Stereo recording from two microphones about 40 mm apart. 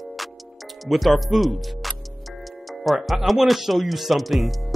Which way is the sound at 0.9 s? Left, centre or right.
Centre.